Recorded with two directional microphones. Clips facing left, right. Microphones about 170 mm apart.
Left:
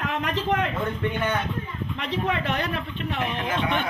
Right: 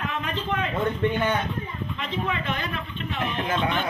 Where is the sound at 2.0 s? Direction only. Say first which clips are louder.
Left 3 dB; 70° left (ahead or behind).